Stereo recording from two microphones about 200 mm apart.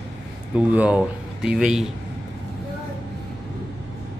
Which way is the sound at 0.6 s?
5° right (ahead or behind).